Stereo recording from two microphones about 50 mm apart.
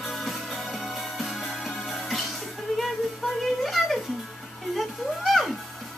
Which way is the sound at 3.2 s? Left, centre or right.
Centre.